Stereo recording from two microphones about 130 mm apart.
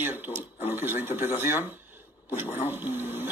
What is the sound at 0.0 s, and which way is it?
A man's voice, 15° right (ahead or behind).